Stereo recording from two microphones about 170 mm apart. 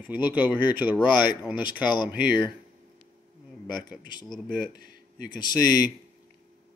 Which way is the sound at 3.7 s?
25° left (ahead or behind).